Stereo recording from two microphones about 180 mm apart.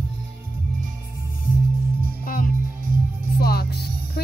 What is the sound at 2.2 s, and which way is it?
Music, 50° left (ahead or behind).